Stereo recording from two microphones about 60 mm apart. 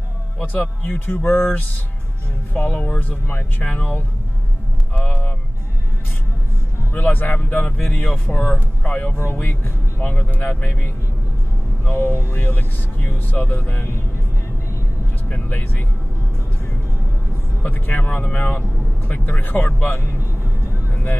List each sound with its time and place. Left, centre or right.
0.4 s speech: left
1.0 s speech: left
2.5 s speech: left
3.3 s speech: left
3.6 s speech: left
4.9 s vehicle: left
6.9 s speech: left
7.9 s speech: left
12.0 s speech: right
12.3 s speech: left
15.2 s speech: left
17.6 s speech: left
20.9 s music: left